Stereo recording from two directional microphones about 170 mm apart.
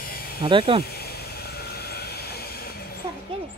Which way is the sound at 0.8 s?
65° left (ahead or behind).